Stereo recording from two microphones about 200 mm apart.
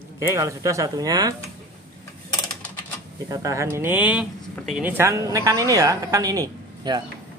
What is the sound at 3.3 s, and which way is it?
Speech, 15° right (ahead or behind).